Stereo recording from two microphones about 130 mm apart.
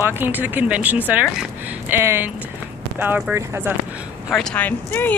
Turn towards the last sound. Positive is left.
turn(degrees=15)  # may be behind; listen again after turning